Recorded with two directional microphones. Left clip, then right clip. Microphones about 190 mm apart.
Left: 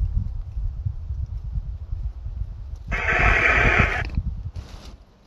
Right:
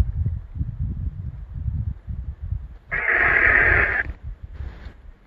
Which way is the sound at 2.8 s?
10° left (ahead or behind).